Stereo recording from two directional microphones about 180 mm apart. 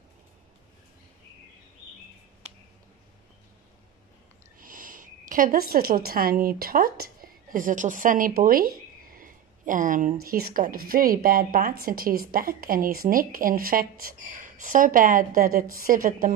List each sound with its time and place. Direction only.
4.6 s a woman's voice: 50° right (ahead or behind)